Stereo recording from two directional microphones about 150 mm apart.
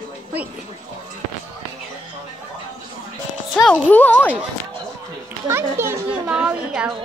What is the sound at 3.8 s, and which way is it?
Speech, 10° left (ahead or behind).